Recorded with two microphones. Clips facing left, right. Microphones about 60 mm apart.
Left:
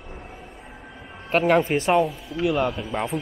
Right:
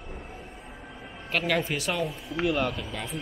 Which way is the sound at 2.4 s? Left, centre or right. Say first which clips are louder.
Left 4 dB; centre.